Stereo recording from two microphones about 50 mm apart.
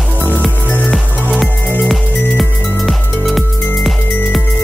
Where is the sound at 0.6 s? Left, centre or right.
Left.